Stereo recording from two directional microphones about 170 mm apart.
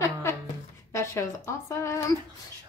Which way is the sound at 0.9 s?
15° left (ahead or behind).